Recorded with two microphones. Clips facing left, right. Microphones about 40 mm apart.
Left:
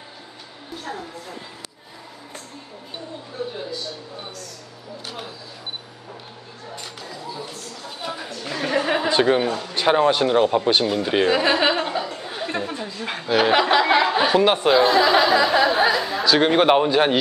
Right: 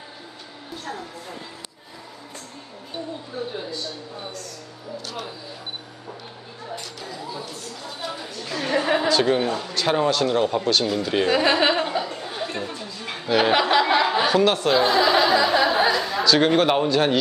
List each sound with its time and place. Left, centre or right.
3.5 s a sound: centre
7.0 s speech: centre
8.0 s speech: centre
9.5 s a man's voice: centre
9.8 s speech: left
11.2 s a sound: centre
13.2 s chuckle: centre
14.7 s speech: centre